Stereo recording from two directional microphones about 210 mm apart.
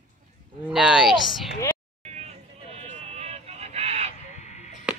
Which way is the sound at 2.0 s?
30° right (ahead or behind).